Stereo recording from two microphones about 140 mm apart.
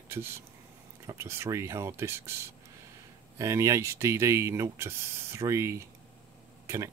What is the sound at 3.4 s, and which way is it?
Speech, 20° right (ahead or behind).